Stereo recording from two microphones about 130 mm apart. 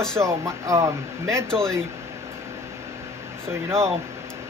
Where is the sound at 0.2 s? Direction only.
25° right (ahead or behind).